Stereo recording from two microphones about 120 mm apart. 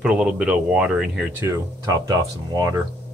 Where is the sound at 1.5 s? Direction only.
30° right (ahead or behind).